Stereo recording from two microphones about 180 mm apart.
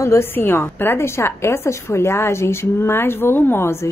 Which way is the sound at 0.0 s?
15° left (ahead or behind).